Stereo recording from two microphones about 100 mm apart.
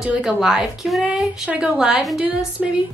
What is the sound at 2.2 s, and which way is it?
Speech, 15° right (ahead or behind).